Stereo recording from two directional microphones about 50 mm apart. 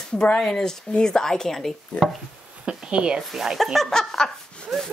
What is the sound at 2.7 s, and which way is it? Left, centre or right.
Speech, centre.